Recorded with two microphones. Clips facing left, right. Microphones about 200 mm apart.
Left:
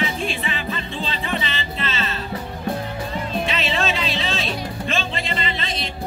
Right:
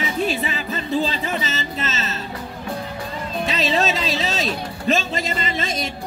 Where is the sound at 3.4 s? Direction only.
40° right (ahead or behind).